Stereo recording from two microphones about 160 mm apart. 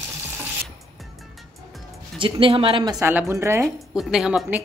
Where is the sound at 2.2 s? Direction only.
30° right (ahead or behind).